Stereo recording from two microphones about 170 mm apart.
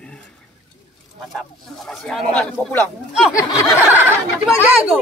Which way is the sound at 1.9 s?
Centre (ahead or behind).